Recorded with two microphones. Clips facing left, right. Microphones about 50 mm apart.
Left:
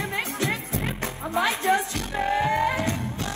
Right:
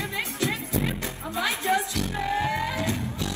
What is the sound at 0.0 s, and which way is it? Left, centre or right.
Music, left.